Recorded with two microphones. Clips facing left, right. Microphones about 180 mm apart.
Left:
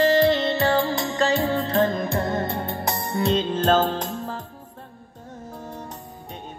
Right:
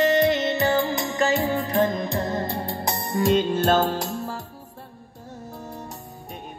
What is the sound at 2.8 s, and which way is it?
Music, 25° right (ahead or behind).